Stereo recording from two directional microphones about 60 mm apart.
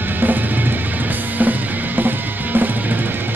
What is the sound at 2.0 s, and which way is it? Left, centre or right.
Music, right.